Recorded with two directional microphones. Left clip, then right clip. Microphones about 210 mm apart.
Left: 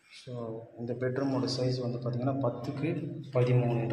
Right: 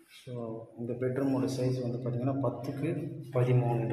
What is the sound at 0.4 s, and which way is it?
A man's voice, 5° right (ahead or behind).